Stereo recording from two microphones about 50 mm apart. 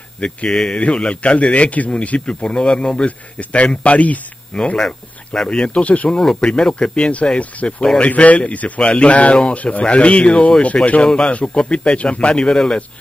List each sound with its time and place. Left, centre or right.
0.2 s a man's voice: centre
4.7 s a man's voice: centre; by 6.0 s left
6.0 s a man's voice: centre